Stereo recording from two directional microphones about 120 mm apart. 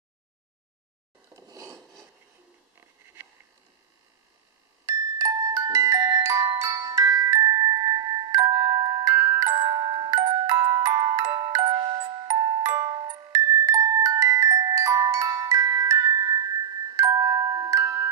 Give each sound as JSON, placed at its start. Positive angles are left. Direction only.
{"t": 1.3, "sound": "filing", "side_deg": -30}
{"t": 4.8, "sound": "glockenspiel", "side_deg": -25}
{"t": 9.1, "sound": "music", "side_deg": -20}
{"t": 9.5, "sound": "glockenspiel", "side_deg": -35}
{"t": 10.7, "sound": "music", "side_deg": -20}
{"t": 11.1, "sound": "glockenspiel", "side_deg": -35}